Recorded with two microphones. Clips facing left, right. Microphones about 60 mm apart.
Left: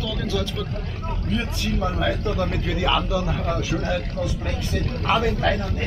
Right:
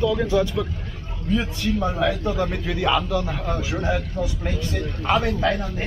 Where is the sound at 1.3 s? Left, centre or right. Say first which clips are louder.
Right 4 dB; centre.